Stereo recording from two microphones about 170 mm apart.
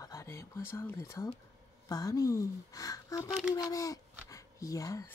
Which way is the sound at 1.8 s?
20° left (ahead or behind).